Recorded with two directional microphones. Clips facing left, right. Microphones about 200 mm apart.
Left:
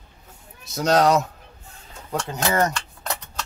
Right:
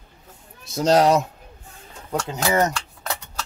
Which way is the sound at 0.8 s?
30° right (ahead or behind).